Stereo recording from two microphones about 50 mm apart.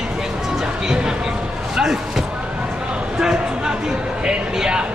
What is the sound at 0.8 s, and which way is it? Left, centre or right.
Speech, centre.